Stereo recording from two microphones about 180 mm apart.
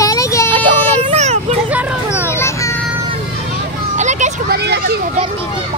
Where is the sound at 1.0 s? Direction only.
35° right (ahead or behind).